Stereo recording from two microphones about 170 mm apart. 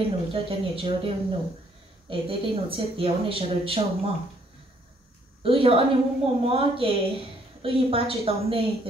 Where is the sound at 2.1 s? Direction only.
30° right (ahead or behind).